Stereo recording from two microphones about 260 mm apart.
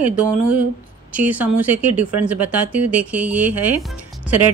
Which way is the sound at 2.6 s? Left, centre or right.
Right.